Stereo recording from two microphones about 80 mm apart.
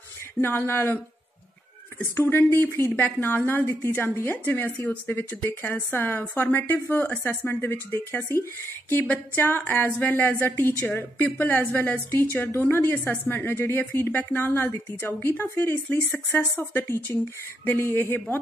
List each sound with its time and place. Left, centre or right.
0.4 s a woman's voice: left
2.1 s a woman's voice: left